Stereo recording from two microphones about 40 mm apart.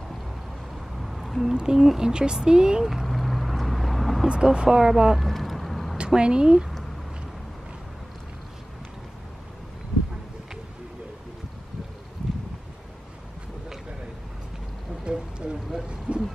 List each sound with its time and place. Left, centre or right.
0.9 s a sound: centre
1.5 s speech: centre
3.1 s vehicle: centre
4.3 s speech: centre
5.1 s vehicle: centre
5.9 s a woman's voice: right
15.0 s a sound: right